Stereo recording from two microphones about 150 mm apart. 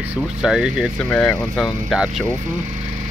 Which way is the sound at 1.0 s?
10° left (ahead or behind).